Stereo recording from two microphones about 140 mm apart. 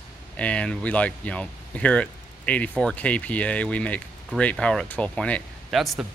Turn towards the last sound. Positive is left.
turn(degrees=0)  # may be behind; listen again after turning